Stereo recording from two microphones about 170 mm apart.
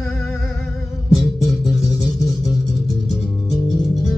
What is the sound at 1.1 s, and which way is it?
Music, centre (ahead or behind).